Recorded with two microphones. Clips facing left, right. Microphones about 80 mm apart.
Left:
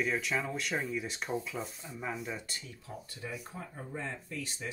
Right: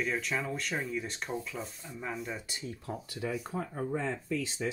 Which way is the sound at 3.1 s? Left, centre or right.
Right.